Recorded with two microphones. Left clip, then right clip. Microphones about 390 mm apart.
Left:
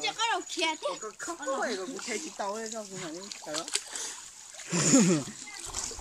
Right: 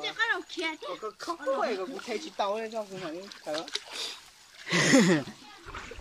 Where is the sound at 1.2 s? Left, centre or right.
Right.